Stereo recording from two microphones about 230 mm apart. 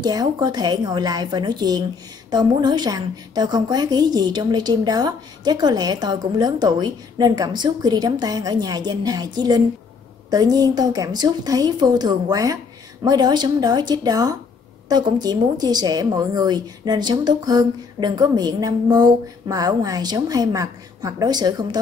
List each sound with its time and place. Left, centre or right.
0.0 s a woman's voice: centre